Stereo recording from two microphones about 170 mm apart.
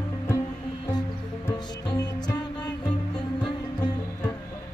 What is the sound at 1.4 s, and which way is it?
Music, 25° left (ahead or behind).